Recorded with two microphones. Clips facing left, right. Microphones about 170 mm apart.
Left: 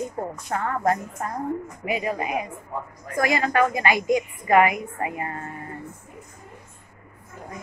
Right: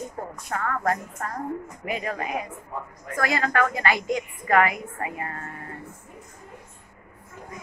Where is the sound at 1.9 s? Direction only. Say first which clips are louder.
Left 3 dB; 10° left (ahead or behind).